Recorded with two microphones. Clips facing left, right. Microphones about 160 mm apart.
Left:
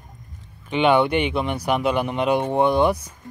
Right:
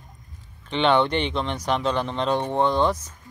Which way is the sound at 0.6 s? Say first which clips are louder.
Left 2 dB; 10° left (ahead or behind).